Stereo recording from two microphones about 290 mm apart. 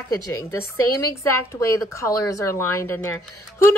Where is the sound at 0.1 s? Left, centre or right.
Centre.